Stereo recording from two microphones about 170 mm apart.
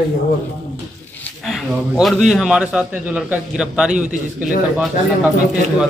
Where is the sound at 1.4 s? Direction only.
Centre (ahead or behind).